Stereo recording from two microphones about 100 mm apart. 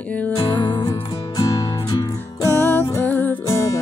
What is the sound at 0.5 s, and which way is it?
Music, 50° left (ahead or behind).